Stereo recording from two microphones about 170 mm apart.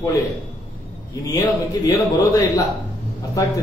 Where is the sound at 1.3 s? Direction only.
20° left (ahead or behind).